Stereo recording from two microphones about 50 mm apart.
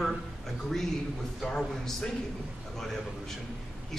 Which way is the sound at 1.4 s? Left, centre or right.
Centre.